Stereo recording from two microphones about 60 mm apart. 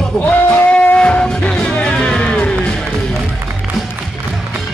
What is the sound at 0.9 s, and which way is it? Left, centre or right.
Music, centre.